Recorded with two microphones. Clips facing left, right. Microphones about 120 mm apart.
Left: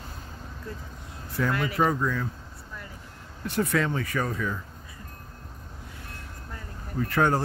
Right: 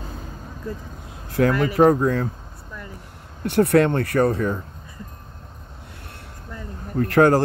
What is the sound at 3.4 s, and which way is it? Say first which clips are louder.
Speech: right 9 dB; 60° right (ahead or behind).